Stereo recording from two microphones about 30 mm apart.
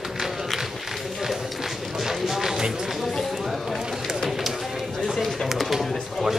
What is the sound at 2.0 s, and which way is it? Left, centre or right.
Music, centre.